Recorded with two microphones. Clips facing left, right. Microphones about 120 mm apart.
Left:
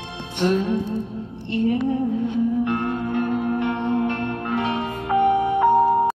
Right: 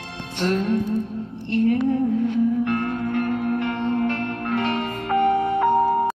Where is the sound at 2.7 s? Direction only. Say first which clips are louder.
Even; 20° left (ahead or behind).